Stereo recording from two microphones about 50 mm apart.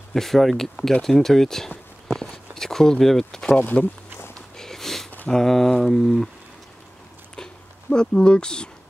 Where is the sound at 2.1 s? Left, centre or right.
Centre.